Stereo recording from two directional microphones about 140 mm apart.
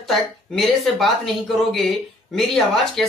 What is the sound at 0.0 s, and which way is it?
Speech, centre (ahead or behind).